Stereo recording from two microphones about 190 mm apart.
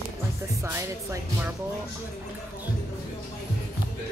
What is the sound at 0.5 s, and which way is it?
Speech, 15° right (ahead or behind).